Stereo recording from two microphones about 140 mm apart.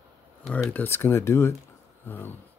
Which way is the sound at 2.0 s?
15° left (ahead or behind).